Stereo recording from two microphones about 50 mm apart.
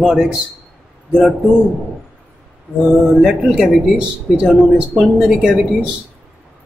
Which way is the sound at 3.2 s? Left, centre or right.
Centre.